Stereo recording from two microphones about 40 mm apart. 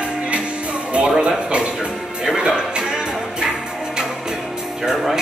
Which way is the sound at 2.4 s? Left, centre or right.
Right.